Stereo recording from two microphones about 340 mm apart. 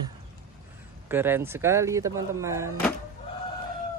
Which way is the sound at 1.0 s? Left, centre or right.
Centre.